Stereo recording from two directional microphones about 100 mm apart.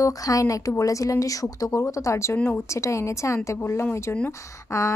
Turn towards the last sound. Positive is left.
turn(degrees=30)  # may be behind; listen again after turning